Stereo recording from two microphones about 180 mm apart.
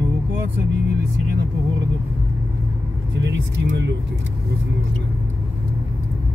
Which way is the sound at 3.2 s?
80° right.